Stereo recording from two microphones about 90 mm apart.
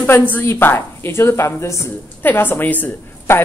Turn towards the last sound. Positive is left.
turn(degrees=25)  # may be behind; listen again after turning